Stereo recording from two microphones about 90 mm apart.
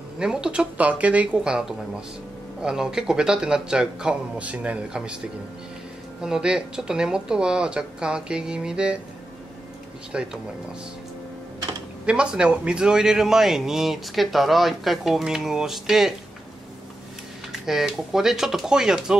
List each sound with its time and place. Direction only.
0.2 s speech: 10° right (ahead or behind)
6.2 s speech: 10° right (ahead or behind)
10.1 s speech: 10° right (ahead or behind)
12.1 s a man's voice: 10° right (ahead or behind)
17.5 s a man's voice: 5° right (ahead or behind)